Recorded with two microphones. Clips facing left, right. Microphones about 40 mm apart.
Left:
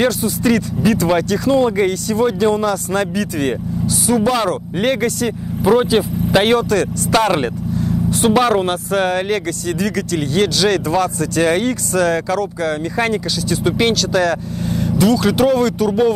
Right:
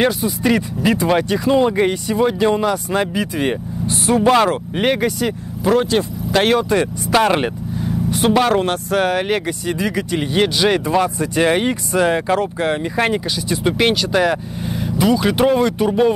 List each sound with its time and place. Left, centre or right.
0.2 s speech: centre
3.8 s speech: right
4.7 s speech: centre
5.6 s speech: centre
6.7 s speech: right
7.1 s speech: centre
8.1 s speech: centre; by 12.7 s right
12.9 s speech: centre